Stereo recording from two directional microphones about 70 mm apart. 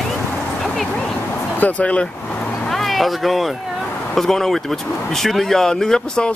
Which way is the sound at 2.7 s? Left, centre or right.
Centre.